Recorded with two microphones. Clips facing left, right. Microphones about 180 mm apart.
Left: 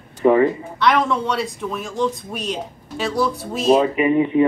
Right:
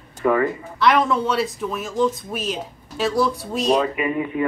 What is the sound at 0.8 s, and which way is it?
Speech, centre (ahead or behind).